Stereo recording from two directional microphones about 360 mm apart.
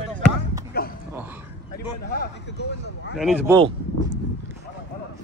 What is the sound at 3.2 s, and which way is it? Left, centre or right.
Speech, centre.